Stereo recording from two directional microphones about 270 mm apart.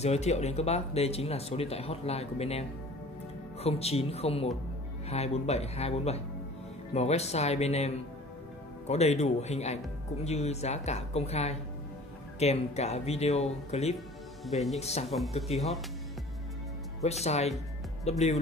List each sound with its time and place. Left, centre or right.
0.0 s speech: left
3.6 s speech: left
14.4 s speech: centre
14.8 s speech: left
17.0 s speech: left